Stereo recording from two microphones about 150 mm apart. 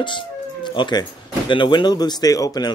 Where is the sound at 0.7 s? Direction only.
30° left (ahead or behind).